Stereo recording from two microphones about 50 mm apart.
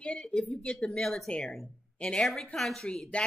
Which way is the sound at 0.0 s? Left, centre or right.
Left.